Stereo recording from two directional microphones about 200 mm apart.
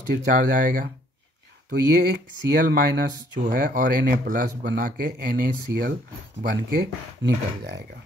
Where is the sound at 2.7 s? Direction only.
50° right (ahead or behind).